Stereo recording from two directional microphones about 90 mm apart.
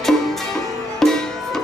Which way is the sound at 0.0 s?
5° left (ahead or behind).